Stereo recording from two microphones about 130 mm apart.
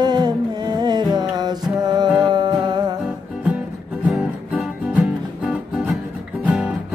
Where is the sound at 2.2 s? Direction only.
35° right (ahead or behind).